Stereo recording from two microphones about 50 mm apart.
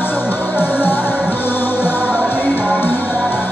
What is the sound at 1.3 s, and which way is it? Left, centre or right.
Music, left.